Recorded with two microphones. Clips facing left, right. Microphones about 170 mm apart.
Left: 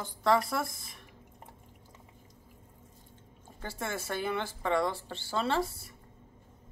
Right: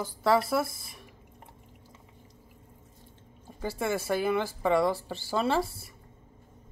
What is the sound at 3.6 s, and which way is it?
Speech, 10° right (ahead or behind).